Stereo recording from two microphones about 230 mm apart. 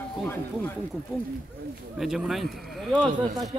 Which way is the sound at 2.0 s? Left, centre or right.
Centre.